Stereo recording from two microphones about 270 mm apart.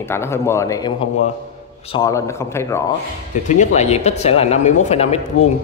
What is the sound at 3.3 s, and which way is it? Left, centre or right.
A man's voice, left.